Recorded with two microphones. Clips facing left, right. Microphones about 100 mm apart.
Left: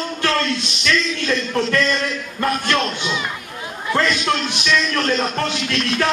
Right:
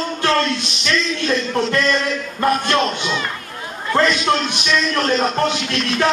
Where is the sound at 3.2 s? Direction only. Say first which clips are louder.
Right 1 dB; 10° left (ahead or behind).